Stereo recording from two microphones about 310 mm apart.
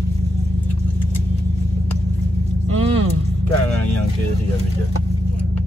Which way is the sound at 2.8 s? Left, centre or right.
Centre.